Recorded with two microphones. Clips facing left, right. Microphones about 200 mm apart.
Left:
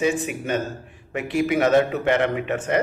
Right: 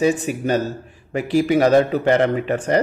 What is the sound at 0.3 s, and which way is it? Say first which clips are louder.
Speech: right 5 dB; 35° right (ahead or behind).